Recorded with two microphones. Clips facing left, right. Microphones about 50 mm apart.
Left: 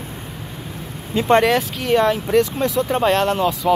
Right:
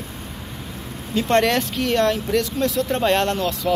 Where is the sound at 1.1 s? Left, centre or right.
Centre.